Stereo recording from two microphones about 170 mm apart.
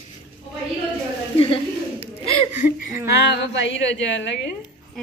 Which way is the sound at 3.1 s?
90° left.